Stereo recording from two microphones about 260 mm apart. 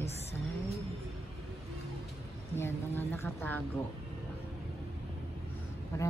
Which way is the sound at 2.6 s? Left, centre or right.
Centre.